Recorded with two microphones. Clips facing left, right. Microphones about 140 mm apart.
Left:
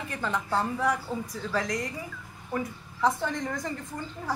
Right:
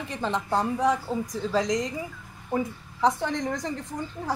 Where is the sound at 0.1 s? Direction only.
20° right (ahead or behind).